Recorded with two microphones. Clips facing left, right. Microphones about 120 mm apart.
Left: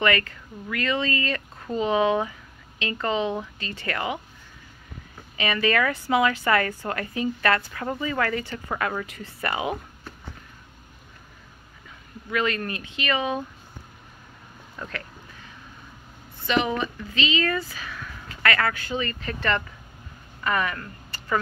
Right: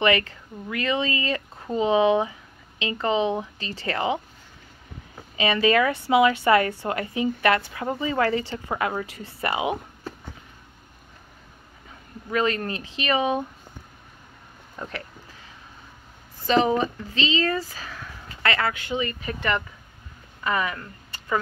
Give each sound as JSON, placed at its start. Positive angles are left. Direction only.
{"t": 0.0, "sound": "a woman's voice", "side_deg": -20}
{"t": 5.3, "sound": "a woman's voice", "side_deg": -25}
{"t": 12.3, "sound": "a woman's voice", "side_deg": -30}
{"t": 14.8, "sound": "a woman's voice", "side_deg": -30}
{"t": 16.4, "sound": "speech", "side_deg": -35}